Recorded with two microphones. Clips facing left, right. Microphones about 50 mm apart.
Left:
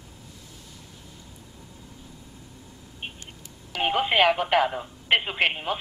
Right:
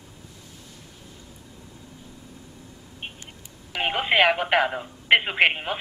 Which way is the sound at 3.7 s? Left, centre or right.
Centre.